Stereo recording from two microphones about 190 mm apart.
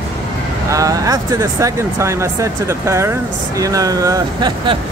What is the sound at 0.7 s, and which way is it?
Speech, 20° right (ahead or behind).